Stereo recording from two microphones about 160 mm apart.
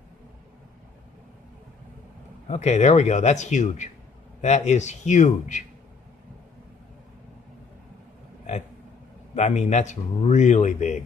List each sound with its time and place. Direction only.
2.4 s a man's voice: 45° left (ahead or behind)
9.3 s a man's voice: 45° left (ahead or behind)